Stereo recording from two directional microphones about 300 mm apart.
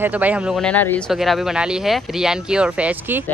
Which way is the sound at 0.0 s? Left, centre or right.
Centre.